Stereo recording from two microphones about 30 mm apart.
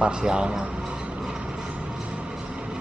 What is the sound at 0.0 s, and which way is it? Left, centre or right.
Speech, right.